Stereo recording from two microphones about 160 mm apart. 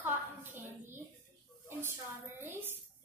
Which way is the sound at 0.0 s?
10° right (ahead or behind).